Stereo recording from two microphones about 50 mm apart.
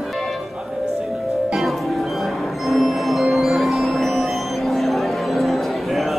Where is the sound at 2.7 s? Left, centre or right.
Centre.